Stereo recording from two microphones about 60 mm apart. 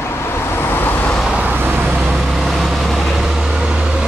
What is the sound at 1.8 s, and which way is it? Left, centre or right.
Vehicle, centre.